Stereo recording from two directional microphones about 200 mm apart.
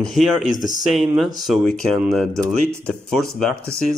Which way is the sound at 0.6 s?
20° right (ahead or behind).